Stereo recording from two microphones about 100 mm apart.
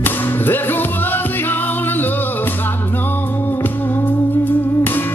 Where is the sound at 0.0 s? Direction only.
20° left (ahead or behind).